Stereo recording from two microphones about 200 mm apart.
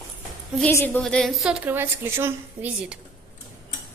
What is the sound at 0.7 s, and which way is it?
A woman's voice, 10° left (ahead or behind).